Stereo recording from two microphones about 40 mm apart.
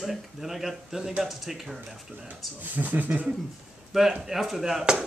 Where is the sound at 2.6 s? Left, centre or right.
Right.